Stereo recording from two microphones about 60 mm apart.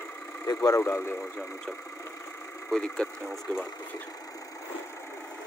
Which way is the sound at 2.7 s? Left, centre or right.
Centre.